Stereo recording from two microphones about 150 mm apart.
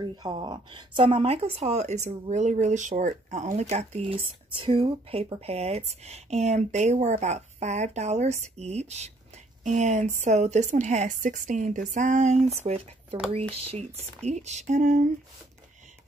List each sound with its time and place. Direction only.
0.0 s speech: 30° right (ahead or behind); by 12.4 s 50° right (ahead or behind)
12.6 s speech: 40° right (ahead or behind); by 15.0 s 55° right (ahead or behind)